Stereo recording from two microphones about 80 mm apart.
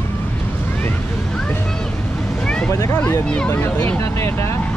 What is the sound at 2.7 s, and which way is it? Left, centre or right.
Speech, left.